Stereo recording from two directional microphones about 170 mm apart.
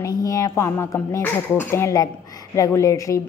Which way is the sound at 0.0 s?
20° left (ahead or behind).